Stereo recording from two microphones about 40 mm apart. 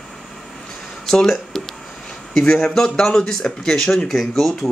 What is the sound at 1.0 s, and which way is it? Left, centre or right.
Speech, centre.